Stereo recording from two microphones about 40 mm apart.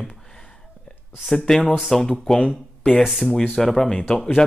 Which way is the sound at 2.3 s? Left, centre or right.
Left.